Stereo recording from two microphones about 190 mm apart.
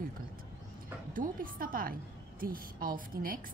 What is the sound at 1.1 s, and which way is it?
A woman's voice, 50° right (ahead or behind).